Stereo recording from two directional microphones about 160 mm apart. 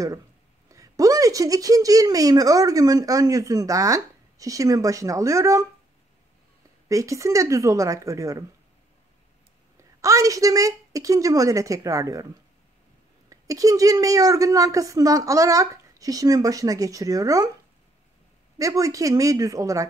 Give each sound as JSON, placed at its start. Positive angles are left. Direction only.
{"t": 0.7, "sound": "speech", "side_deg": -20}
{"t": 6.9, "sound": "speech", "side_deg": -20}
{"t": 9.8, "sound": "a woman's voice", "side_deg": -20}
{"t": 13.3, "sound": "speech", "side_deg": -20}
{"t": 18.6, "sound": "speech", "side_deg": -20}